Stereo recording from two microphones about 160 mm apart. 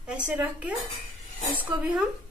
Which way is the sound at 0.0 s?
5° right (ahead or behind).